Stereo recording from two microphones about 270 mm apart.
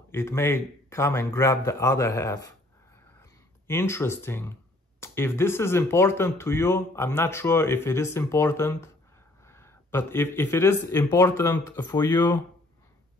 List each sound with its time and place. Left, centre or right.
0.1 s speech: centre
3.2 s a sound: centre
5.0 s speech: centre